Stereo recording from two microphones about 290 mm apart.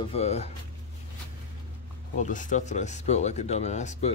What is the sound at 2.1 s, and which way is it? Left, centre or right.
Speech, left.